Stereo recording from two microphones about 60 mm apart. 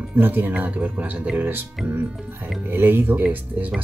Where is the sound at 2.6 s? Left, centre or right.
Right.